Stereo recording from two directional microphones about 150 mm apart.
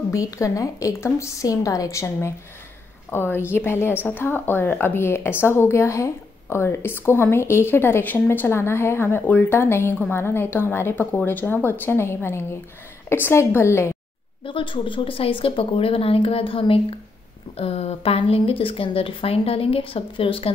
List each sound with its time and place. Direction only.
0.1 s a woman's voice: 20° left (ahead or behind)
14.4 s speech: 35° left (ahead or behind)